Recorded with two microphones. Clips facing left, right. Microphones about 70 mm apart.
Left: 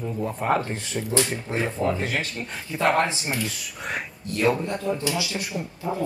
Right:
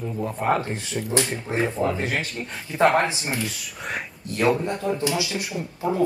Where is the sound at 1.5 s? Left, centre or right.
Right.